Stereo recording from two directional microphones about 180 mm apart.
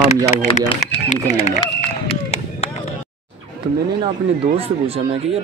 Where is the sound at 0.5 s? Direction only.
40° left (ahead or behind).